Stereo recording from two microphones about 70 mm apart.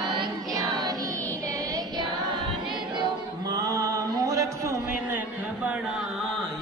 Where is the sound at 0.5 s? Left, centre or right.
Right.